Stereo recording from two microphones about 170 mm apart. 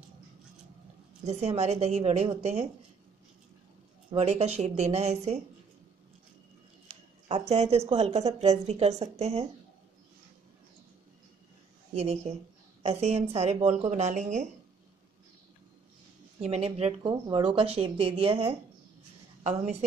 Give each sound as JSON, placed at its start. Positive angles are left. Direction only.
{"t": 1.2, "sound": "speech", "side_deg": -40}
{"t": 4.1, "sound": "speech", "side_deg": -40}
{"t": 6.9, "sound": "speech", "side_deg": -35}
{"t": 11.9, "sound": "speech", "side_deg": -40}
{"t": 16.3, "sound": "speech", "side_deg": -35}